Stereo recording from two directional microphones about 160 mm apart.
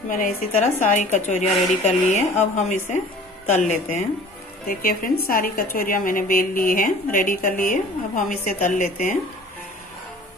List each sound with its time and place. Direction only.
0.1 s a woman's voice: 55° left (ahead or behind)
4.6 s speech: 60° left (ahead or behind)